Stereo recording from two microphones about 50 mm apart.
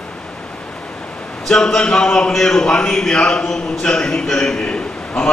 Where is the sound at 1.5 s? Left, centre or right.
Centre.